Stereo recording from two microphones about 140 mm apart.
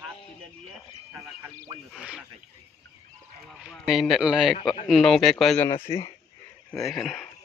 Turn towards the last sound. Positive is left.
turn(degrees=0)  # may be behind; listen again after turning